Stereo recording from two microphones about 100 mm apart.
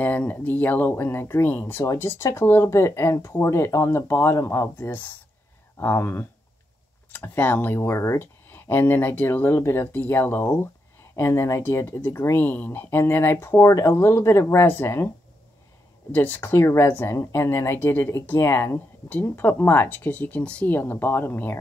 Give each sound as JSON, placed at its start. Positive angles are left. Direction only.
{"t": 0.0, "sound": "speech", "side_deg": 15}
{"t": 16.1, "sound": "speech", "side_deg": 20}